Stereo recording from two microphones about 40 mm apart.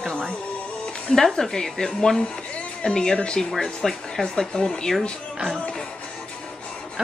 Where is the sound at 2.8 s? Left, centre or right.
Centre.